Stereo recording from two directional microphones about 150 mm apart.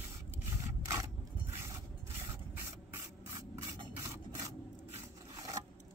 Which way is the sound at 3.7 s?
25° right (ahead or behind).